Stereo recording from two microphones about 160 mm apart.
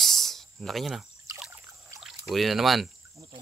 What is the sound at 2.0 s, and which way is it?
Speech, centre (ahead or behind).